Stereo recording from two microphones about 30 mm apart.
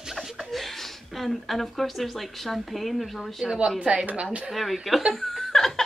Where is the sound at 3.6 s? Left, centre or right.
Right.